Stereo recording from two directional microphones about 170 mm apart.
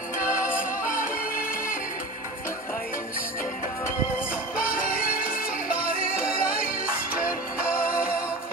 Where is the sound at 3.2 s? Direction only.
55° left (ahead or behind).